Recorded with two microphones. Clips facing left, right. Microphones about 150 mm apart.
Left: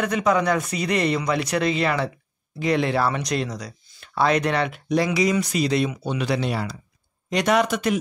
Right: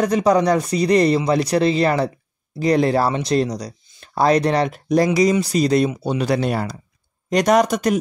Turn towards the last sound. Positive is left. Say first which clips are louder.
# right 4 dB
turn(degrees=-40)  # may be behind; listen again after turning